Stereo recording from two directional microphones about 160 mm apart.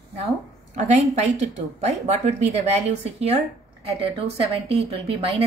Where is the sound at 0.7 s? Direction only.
45° right (ahead or behind).